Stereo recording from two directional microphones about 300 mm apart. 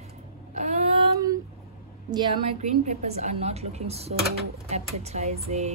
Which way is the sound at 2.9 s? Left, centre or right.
Right.